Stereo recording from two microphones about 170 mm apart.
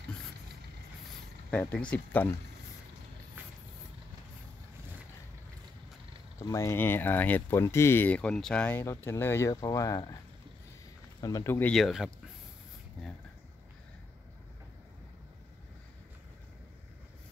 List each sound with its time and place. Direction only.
1.5 s speech: 5° left (ahead or behind)
6.3 s speech: 20° left (ahead or behind)
11.1 s speech: 20° left (ahead or behind)
11.7 s speech: centre (ahead or behind)